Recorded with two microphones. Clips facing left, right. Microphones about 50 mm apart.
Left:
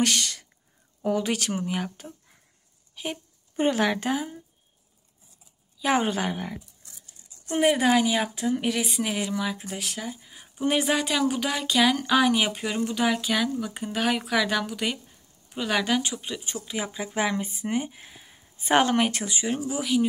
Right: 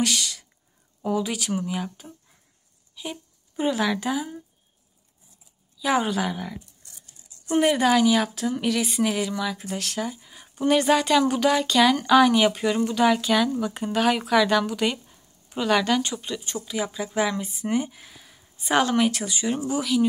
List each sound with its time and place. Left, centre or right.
0.0 s a woman's voice: left
5.8 s speech: left
7.5 s a woman's voice: centre
9.8 s a woman's voice: centre; by 19.5 s left
19.7 s a woman's voice: centre